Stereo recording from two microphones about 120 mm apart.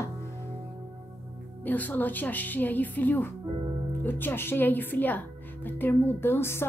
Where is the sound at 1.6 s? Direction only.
15° left (ahead or behind).